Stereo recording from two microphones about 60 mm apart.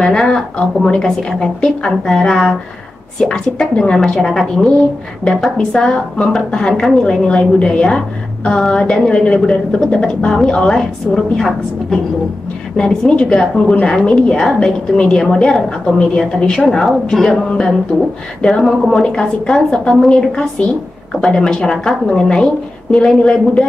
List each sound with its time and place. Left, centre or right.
0.0 s a woman's voice: centre
14.4 s speech: centre
15.0 s a woman's voice: centre
16.6 s speech: centre
18.4 s a woman's voice: centre